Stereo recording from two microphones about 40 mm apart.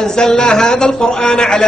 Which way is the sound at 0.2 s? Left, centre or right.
Centre.